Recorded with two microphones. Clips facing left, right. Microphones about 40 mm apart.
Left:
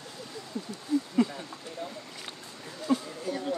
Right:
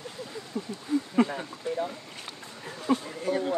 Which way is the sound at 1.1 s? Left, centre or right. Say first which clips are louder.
Right 2 dB; right.